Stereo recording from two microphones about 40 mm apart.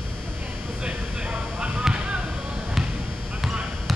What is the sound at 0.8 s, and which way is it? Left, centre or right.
Basketball bounce, right.